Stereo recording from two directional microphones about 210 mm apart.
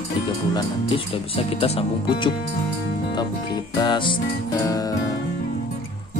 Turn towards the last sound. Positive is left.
turn(degrees=15)  # may be behind; listen again after turning